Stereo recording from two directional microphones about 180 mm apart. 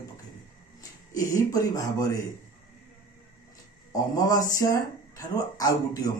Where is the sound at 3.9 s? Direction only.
20° left (ahead or behind).